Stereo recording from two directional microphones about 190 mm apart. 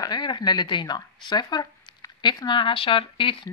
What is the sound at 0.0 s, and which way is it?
Speech, 20° left (ahead or behind).